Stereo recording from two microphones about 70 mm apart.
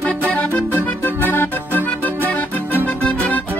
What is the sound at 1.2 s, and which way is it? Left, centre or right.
Music, left.